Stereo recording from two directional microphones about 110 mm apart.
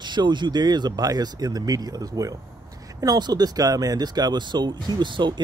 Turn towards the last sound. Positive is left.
turn(degrees=-45)  # may be behind; listen again after turning